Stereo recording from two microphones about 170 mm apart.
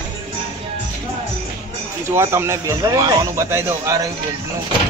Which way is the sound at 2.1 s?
15° right (ahead or behind).